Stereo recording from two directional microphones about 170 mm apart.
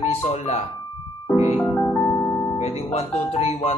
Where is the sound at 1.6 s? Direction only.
10° left (ahead or behind).